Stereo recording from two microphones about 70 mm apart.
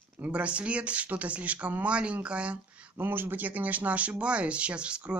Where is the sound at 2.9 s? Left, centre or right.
Right.